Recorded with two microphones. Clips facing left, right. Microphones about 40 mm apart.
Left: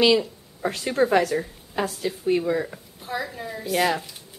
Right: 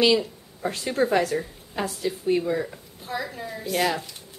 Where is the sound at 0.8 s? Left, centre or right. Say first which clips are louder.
Left 2 dB; centre.